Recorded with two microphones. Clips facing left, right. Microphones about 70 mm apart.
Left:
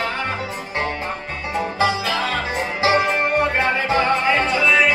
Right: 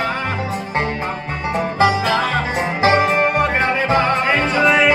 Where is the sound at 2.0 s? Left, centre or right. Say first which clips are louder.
Right 4 dB; right.